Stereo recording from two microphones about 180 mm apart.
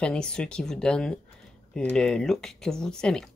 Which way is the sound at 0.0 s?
5° left (ahead or behind).